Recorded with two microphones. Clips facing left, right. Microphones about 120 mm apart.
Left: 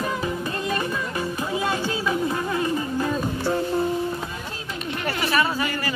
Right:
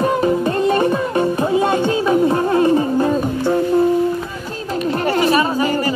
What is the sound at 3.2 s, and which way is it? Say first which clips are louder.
Music: right 7 dB; 20° right (ahead or behind).